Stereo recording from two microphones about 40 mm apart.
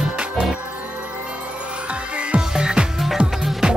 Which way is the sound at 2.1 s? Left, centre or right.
Right.